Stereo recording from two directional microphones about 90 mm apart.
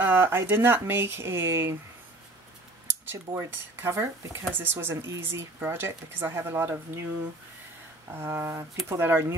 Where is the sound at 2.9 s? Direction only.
25° right (ahead or behind).